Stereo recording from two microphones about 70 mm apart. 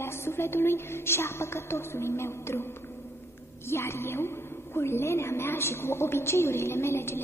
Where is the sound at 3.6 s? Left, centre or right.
Left.